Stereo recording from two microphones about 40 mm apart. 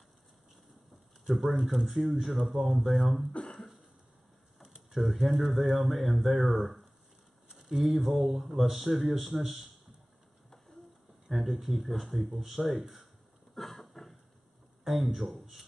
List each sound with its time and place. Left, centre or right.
1.2 s speech: centre
3.4 s cough: left
4.6 s speech: centre
8.5 s speech: centre
11.3 s speech: centre
13.6 s a sound: centre
15.0 s speech: centre